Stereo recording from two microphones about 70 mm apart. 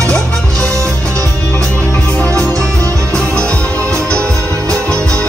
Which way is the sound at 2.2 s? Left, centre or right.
Right.